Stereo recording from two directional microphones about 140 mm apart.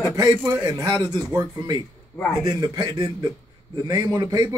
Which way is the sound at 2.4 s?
30° right (ahead or behind).